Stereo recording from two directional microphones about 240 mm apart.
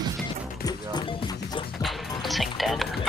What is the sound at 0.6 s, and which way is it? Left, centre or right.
Music, centre.